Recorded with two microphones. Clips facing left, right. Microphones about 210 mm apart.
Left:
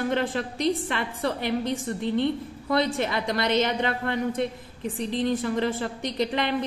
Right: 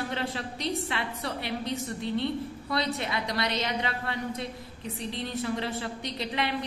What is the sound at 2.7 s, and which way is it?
A woman's voice, 50° left (ahead or behind).